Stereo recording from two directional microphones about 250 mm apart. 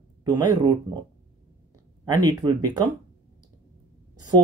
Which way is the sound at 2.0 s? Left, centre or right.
Centre.